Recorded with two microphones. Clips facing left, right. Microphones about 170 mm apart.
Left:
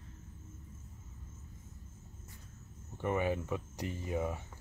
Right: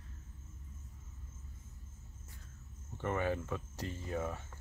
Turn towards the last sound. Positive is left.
turn(degrees=15)  # may be behind; listen again after turning